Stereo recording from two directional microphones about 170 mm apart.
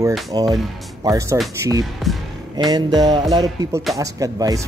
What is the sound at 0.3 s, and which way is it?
Music, 20° right (ahead or behind).